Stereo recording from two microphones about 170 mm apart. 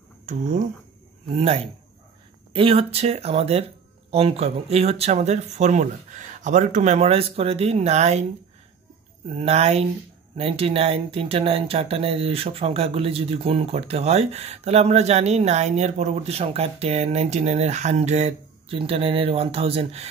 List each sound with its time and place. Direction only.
0.3 s speech: 45° right (ahead or behind)
1.3 s speech: 35° right (ahead or behind)
9.3 s speech: 40° right (ahead or behind)